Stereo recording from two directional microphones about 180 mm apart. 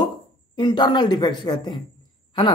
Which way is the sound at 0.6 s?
25° left (ahead or behind).